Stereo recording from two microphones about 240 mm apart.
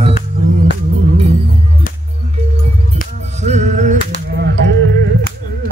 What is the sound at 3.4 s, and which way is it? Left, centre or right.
Music, right.